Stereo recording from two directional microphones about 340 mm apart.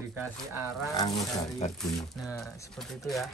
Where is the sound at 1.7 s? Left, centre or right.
Centre.